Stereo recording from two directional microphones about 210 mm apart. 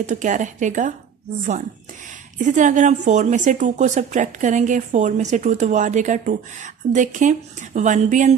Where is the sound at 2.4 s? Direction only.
35° right (ahead or behind).